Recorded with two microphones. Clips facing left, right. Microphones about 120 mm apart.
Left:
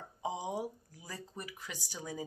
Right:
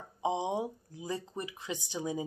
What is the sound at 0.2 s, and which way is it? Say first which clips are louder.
Speech: right 5 dB; 20° right (ahead or behind).